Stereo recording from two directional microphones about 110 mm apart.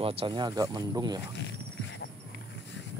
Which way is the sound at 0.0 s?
60° right (ahead or behind).